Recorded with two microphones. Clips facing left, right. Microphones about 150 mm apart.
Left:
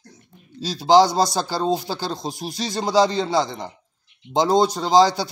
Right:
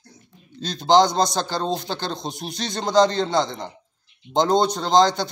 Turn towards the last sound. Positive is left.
turn(degrees=5)  # may be behind; listen again after turning